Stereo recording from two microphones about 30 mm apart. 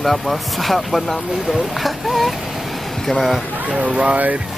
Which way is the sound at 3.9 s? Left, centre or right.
Right.